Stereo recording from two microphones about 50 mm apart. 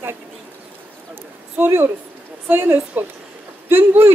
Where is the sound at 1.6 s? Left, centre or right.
Right.